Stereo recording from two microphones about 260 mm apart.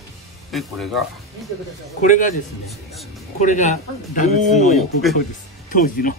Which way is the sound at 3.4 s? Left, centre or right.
Left.